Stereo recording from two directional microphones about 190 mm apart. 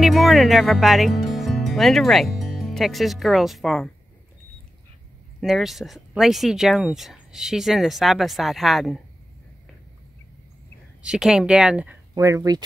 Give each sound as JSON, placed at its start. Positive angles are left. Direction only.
{"t": 0.0, "sound": "speech", "side_deg": 0}
{"t": 5.4, "sound": "speech", "side_deg": 0}
{"t": 11.0, "sound": "speech", "side_deg": -5}
{"t": 12.1, "sound": "speech", "side_deg": -15}